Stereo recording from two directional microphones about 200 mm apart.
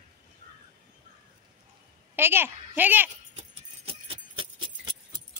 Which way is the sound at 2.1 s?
10° right (ahead or behind).